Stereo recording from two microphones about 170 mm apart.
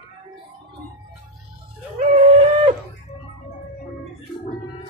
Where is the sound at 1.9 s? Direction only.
45° right (ahead or behind).